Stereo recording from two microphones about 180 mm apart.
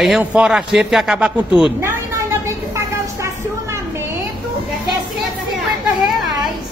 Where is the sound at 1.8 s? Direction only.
15° right (ahead or behind).